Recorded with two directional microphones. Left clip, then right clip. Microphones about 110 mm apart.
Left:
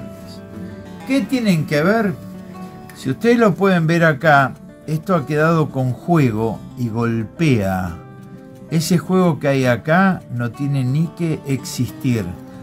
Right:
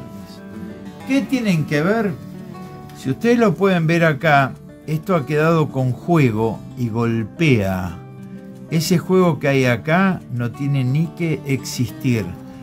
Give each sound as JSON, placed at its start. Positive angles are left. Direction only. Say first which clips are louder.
{"t": 1.0, "sound": "speech", "louder": "left 1 dB", "side_deg": 0}
{"t": 3.0, "sound": "speech", "louder": "left 2 dB", "side_deg": -15}